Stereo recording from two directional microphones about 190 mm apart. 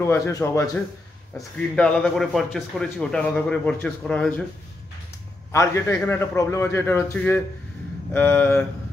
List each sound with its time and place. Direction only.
0.0 s a man's voice: 15° left (ahead or behind)
1.8 s a man's voice: 5° left (ahead or behind)
5.5 s a man's voice: 15° left (ahead or behind)